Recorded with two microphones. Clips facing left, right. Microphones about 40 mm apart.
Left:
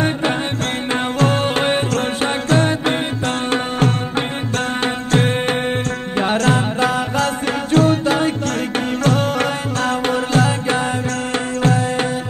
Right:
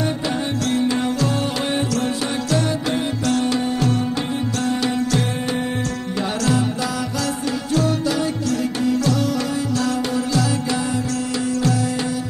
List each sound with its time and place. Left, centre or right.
1.2 s music: left
11.6 s tabla: left